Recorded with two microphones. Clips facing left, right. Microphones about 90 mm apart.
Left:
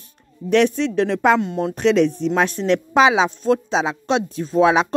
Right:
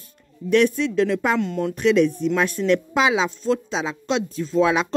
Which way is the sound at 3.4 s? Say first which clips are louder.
Left 4 dB; 40° left (ahead or behind).